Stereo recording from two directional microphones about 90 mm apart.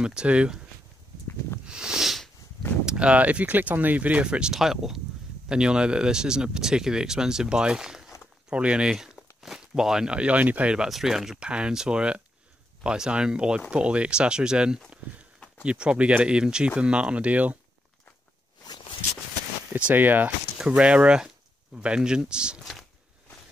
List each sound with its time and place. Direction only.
0.0 s speech: 10° right (ahead or behind)
1.7 s sniff: 10° right (ahead or behind)
2.8 s speech: 10° right (ahead or behind)
18.6 s walk: 50° left (ahead or behind)
19.7 s speech: 20° right (ahead or behind)